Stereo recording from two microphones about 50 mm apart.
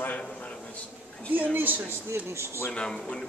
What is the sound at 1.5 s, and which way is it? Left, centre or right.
Speech, right.